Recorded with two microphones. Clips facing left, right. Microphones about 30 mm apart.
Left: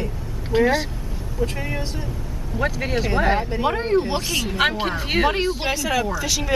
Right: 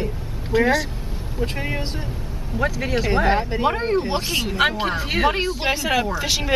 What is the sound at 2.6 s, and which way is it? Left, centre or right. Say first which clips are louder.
Speech: right 1 dB; centre.